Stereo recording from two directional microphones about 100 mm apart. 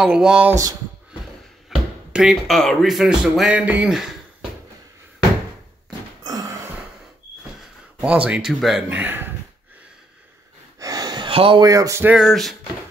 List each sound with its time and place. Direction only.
0.0 s speech: 5° right (ahead or behind)
1.7 s speech: centre (ahead or behind)
5.9 s a sound: 40° right (ahead or behind)
8.0 s speech: 10° right (ahead or behind)
8.8 s speech: 20° right (ahead or behind)
10.8 s a sound: 40° right (ahead or behind)
11.2 s speech: 60° right (ahead or behind)
11.6 s a sound: 35° right (ahead or behind)
12.2 s speech: centre (ahead or behind)